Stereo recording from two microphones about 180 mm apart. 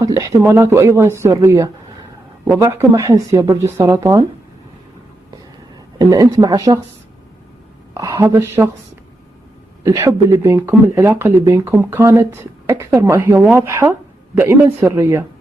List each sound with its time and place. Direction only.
0.0 s speech: 20° right (ahead or behind)
5.9 s speech: 20° right (ahead or behind)
7.9 s speech: 15° right (ahead or behind)
9.8 s speech: 20° right (ahead or behind)